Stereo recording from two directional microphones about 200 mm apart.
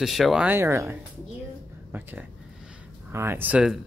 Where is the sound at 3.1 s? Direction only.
10° right (ahead or behind).